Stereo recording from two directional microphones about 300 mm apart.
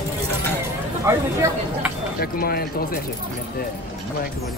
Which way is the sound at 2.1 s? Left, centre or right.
Left.